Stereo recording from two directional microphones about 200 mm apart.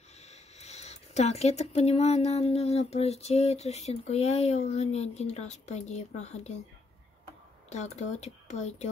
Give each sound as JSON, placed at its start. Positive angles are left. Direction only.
{"t": 0.3, "sound": "speech", "side_deg": 35}
{"t": 7.7, "sound": "speech", "side_deg": 35}